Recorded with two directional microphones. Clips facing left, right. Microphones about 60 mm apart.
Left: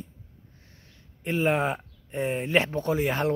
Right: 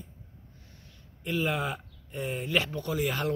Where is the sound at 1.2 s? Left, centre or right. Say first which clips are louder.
Left 5 dB; left.